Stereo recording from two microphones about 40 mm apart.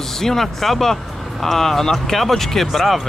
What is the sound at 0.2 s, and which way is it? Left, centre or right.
Speech, centre.